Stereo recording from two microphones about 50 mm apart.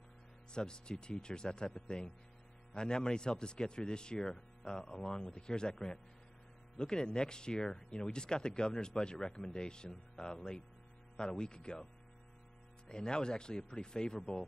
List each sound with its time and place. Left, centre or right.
0.5 s a man's voice: centre